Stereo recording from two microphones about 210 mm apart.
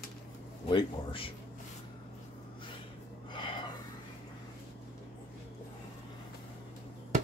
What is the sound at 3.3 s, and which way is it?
Snort, 20° left (ahead or behind).